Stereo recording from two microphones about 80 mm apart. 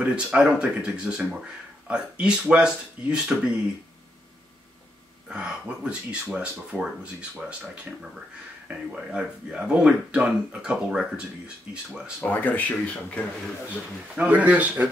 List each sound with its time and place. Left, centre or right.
0.0 s speech: centre
5.3 s speech: centre
12.2 s speech: left
14.1 s speech: centre